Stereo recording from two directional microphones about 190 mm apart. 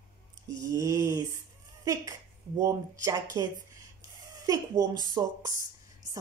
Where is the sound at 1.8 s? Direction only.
20° right (ahead or behind).